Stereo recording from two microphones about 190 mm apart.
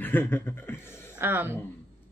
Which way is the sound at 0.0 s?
10° left (ahead or behind).